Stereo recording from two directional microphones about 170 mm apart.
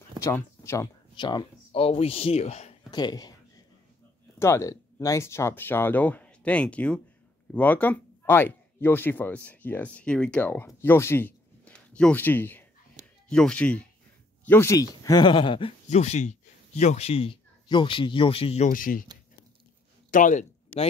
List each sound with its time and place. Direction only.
0.2 s speech: 15° left (ahead or behind)
1.1 s speech: 25° left (ahead or behind)
2.9 s speech: 25° left (ahead or behind)
4.4 s speech: 15° left (ahead or behind)
15.9 s speech: 40° left (ahead or behind)
18.7 s speech: 55° left (ahead or behind)
20.1 s speech: 50° left (ahead or behind)